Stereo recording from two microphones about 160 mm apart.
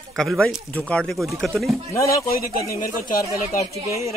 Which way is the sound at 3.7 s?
20° right (ahead or behind).